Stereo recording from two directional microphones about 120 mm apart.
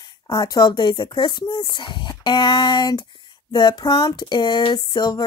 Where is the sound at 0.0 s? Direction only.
35° left (ahead or behind).